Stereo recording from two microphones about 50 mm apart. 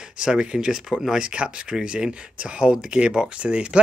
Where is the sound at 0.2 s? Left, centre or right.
Centre.